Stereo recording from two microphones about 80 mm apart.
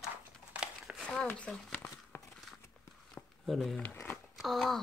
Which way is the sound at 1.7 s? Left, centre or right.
Centre.